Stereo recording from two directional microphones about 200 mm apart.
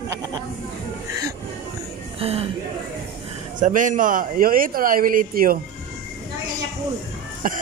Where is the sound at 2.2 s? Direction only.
30° right (ahead or behind).